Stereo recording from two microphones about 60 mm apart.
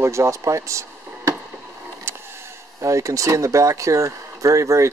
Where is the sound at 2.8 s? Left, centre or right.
Right.